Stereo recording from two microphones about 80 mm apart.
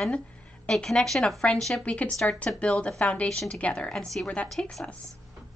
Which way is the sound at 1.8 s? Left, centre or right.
Centre.